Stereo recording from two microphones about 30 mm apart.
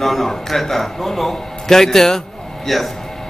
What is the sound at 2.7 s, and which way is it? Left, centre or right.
Speech, centre.